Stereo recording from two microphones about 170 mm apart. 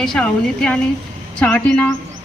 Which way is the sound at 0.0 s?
5° left (ahead or behind).